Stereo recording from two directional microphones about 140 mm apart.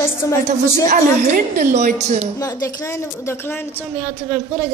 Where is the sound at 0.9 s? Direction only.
60° right (ahead or behind).